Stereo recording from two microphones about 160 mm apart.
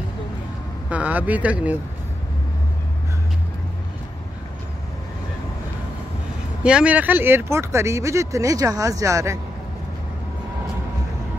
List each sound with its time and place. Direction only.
0.8 s speech: 10° right (ahead or behind)
6.6 s speech: 5° right (ahead or behind)